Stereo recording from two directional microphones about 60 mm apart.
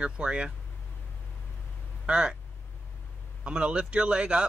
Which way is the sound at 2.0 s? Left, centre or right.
Centre.